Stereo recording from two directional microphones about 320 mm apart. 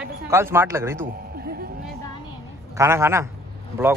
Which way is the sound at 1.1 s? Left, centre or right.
Right.